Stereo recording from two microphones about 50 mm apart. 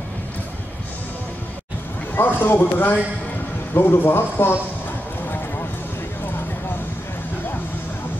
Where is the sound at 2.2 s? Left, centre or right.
Left.